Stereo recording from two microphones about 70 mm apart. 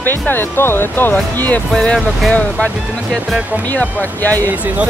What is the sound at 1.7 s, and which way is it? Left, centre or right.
Speech, centre.